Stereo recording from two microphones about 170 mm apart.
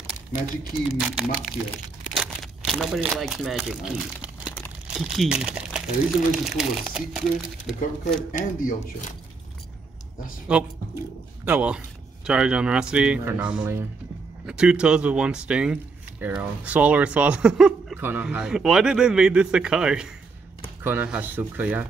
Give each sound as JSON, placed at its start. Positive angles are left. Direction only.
{"t": 2.1, "sound": "speech", "side_deg": 0}
{"t": 8.3, "sound": "speech", "side_deg": 50}
{"t": 10.5, "sound": "speech", "side_deg": -5}